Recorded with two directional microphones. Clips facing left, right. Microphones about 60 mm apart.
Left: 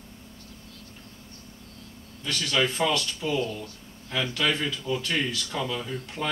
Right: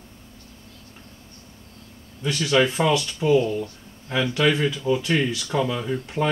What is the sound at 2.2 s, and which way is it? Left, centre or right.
Speech, centre.